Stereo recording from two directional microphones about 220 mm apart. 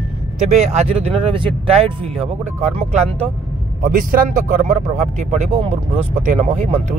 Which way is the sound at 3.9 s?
40° right (ahead or behind).